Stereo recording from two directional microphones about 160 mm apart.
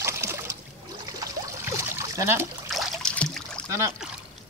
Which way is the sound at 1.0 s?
20° right (ahead or behind).